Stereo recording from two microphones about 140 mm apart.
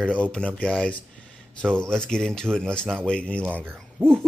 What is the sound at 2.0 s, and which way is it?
Speech, 5° left (ahead or behind).